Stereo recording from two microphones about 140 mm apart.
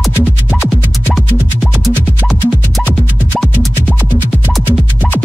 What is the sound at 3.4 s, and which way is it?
Music, centre (ahead or behind).